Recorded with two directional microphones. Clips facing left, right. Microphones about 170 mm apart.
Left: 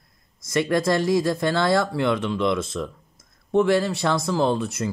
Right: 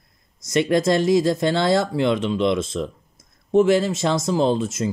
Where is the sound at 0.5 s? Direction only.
25° right (ahead or behind).